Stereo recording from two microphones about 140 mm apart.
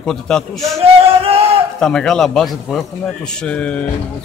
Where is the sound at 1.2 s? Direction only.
45° right (ahead or behind).